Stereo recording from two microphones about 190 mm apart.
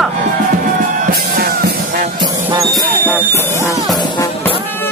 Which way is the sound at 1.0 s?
50° right (ahead or behind).